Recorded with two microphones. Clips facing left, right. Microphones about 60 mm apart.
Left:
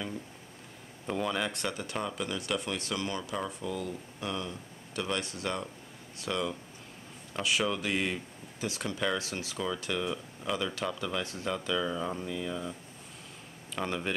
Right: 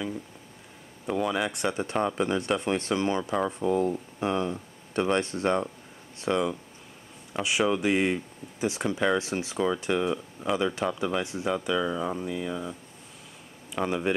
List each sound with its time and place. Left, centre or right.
1.0 s speech: centre